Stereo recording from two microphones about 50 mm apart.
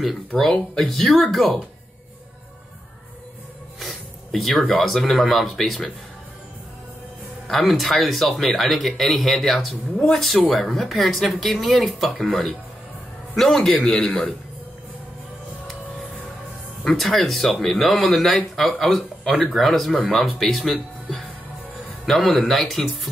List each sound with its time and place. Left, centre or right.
0.4 s speech: centre
3.8 s speech: centre
7.4 s speech: centre
9.9 s speech: centre
10.5 s speech: centre
13.3 s speech: centre
16.9 s speech: centre
22.1 s speech: centre
22.5 s speech: centre